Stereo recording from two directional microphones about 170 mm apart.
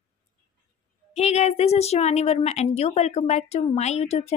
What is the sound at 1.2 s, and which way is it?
A woman's voice, 40° left (ahead or behind).